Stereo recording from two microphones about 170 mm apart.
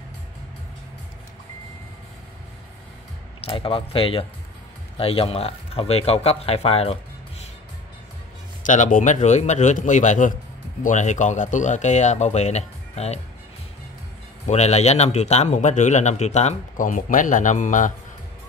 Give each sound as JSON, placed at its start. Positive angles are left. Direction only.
{"t": 3.3, "sound": "speech", "side_deg": 30}
{"t": 8.6, "sound": "speech", "side_deg": 45}
{"t": 14.5, "sound": "speech", "side_deg": 40}